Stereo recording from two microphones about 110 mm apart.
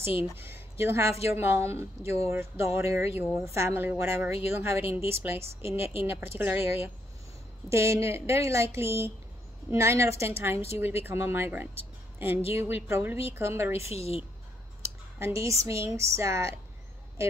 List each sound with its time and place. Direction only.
0.4 s a woman's voice: 20° right (ahead or behind)
13.8 s a woman's voice: 65° left (ahead or behind)
14.8 s speech: 25° right (ahead or behind)